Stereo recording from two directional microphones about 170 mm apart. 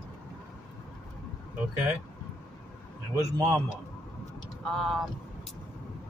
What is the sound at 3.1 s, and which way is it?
Speech, 20° right (ahead or behind).